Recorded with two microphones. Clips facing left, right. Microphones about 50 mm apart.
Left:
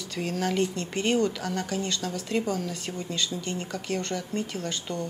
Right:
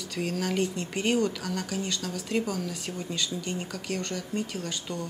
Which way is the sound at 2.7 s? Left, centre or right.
Centre.